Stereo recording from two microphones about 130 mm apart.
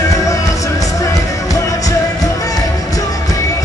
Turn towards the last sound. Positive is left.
turn(degrees=30)  # may be behind; listen again after turning